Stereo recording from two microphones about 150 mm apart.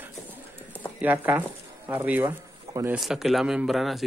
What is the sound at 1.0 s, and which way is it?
A man's voice, 10° right (ahead or behind).